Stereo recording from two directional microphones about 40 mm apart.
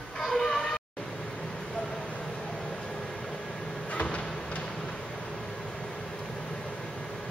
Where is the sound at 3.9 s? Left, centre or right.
Left.